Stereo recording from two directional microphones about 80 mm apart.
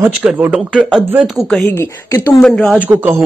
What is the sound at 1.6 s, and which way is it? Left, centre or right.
Speech, left.